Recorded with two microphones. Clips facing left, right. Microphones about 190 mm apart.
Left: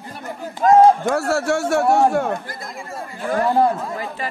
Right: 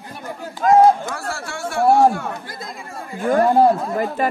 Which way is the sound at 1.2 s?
70° left (ahead or behind).